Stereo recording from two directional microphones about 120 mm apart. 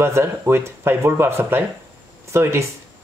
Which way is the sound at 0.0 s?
20° right (ahead or behind).